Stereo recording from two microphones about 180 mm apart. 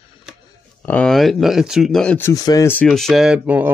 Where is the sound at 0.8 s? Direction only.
5° left (ahead or behind).